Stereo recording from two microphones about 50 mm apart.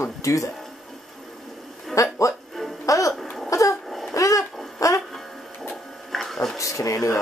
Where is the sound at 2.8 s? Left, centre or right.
Left.